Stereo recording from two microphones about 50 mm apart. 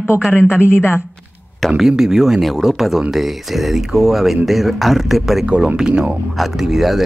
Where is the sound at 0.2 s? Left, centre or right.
Centre.